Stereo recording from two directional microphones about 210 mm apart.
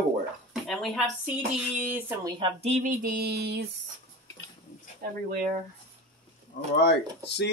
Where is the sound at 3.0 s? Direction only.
45° right (ahead or behind).